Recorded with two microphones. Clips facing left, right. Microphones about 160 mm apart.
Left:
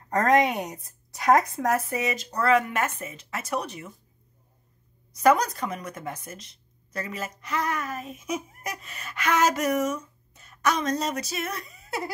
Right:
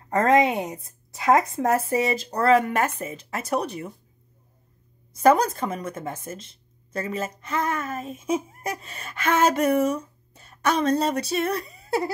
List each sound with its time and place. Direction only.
0.1 s a woman's voice: 25° right (ahead or behind)
5.1 s speech: 30° right (ahead or behind)